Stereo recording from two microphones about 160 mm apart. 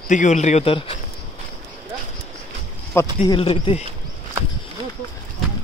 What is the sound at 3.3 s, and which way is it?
Speech, 35° left (ahead or behind).